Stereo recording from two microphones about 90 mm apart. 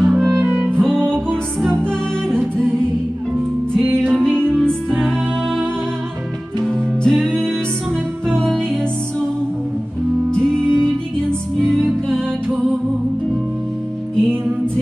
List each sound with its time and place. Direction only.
0.0 s music: centre (ahead or behind)
0.5 s music: 15° right (ahead or behind)
1.8 s music: 10° left (ahead or behind)
4.2 s music: 5° left (ahead or behind)
6.6 s music: 5° left (ahead or behind)
10.5 s music: 5° left (ahead or behind)